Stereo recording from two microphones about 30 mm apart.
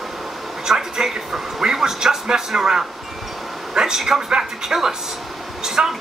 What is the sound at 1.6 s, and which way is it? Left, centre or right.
A man's voice, centre.